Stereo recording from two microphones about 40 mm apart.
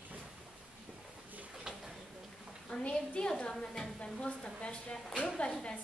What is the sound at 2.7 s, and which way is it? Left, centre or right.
Speech, left.